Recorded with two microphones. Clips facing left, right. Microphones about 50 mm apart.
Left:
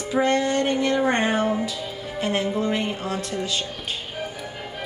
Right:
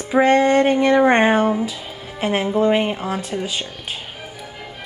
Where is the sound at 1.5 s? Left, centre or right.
Centre.